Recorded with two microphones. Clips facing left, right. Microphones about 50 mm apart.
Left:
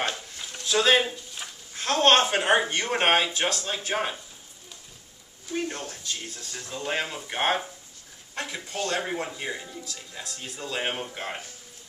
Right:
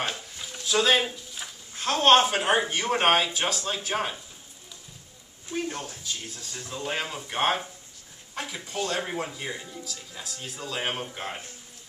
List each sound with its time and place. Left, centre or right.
0.1 s speech: centre
5.5 s speech: centre